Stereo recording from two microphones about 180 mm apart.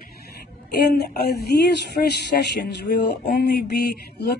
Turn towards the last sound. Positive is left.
turn(degrees=65)  # may be behind; listen again after turning